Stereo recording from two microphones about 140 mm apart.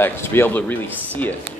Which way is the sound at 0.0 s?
15° left (ahead or behind).